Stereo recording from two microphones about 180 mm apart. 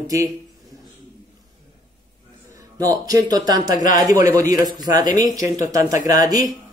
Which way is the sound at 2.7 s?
20° right (ahead or behind).